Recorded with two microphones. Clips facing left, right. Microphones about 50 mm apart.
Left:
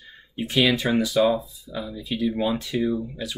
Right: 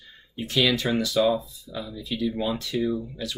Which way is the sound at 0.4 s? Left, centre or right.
Centre.